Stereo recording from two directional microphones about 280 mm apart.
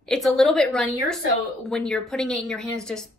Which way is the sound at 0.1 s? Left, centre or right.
Centre.